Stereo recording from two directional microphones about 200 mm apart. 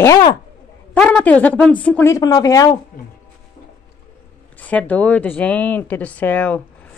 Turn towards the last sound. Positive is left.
turn(degrees=10)  # may be behind; listen again after turning